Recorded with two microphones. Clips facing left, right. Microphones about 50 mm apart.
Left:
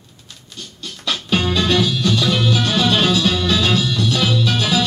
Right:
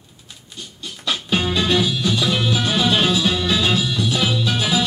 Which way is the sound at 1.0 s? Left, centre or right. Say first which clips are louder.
Left 2 dB; right.